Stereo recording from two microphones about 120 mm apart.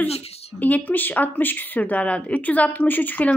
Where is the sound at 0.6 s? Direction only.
15° left (ahead or behind).